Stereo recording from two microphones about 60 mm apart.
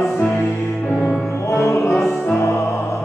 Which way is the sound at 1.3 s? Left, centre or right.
Left.